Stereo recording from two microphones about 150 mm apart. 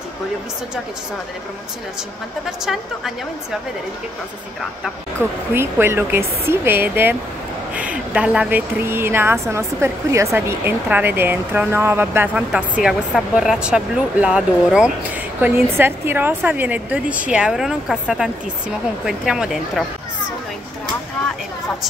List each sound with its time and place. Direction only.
2.6 s speech: centre (ahead or behind)
5.5 s speech: 15° right (ahead or behind)